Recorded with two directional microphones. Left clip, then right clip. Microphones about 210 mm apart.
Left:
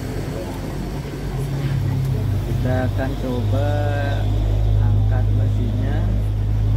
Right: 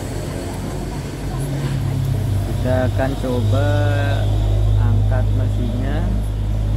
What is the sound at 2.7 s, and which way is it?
Speech, 10° right (ahead or behind).